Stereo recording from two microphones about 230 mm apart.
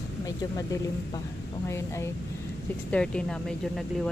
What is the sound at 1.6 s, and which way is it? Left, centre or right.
Speech, centre.